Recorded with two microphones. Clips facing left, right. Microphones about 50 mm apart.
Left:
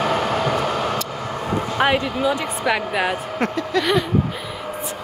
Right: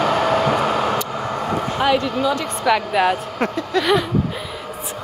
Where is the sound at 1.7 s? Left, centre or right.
Left.